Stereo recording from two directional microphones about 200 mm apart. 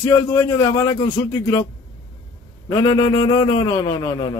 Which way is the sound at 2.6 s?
20° left (ahead or behind).